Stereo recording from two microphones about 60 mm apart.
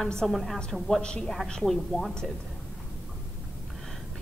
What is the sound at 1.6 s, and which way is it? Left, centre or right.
Speech, centre.